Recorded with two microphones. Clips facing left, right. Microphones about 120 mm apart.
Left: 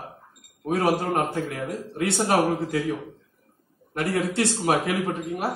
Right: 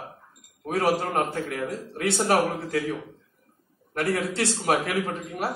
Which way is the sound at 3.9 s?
20° left (ahead or behind).